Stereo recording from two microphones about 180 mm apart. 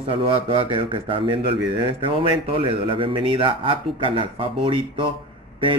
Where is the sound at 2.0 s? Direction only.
25° right (ahead or behind).